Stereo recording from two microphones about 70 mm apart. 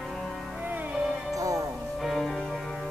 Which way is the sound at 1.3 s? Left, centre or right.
Right.